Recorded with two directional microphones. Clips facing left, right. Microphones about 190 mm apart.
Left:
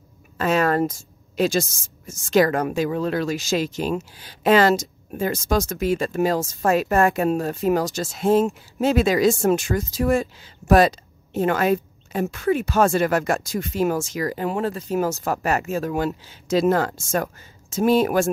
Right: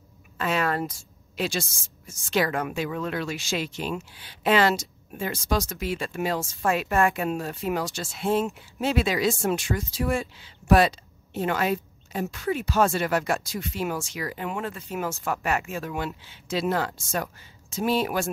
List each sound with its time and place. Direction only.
0.4 s a woman's voice: 45° left (ahead or behind)